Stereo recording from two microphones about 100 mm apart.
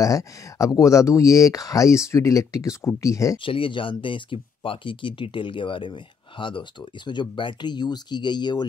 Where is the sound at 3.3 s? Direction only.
60° left (ahead or behind).